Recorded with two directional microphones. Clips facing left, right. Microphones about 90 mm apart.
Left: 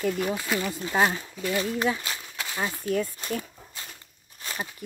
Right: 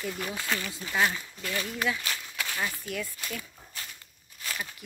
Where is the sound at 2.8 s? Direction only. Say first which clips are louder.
Left 8 dB; 40° left (ahead or behind).